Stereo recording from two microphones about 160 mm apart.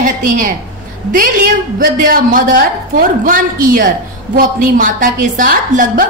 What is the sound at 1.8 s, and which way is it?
A woman's voice, 60° right (ahead or behind).